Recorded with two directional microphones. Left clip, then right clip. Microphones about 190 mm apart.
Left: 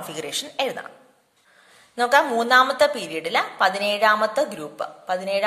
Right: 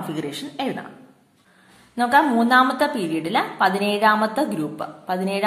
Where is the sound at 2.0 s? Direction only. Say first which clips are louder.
Right 1 dB; 40° left (ahead or behind).